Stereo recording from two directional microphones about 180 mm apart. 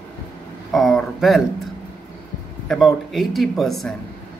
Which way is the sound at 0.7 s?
Centre (ahead or behind).